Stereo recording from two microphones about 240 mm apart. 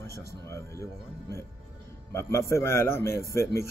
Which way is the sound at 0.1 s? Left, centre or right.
Left.